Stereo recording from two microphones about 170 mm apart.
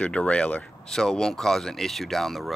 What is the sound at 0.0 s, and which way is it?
Speech, 5° left (ahead or behind).